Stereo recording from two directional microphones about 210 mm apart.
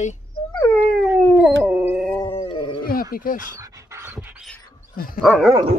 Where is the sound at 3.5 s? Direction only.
15° right (ahead or behind).